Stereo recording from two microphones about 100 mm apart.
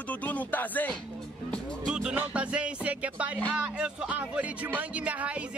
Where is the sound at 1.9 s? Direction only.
5° right (ahead or behind).